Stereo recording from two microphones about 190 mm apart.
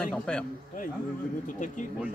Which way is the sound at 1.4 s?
45° left (ahead or behind).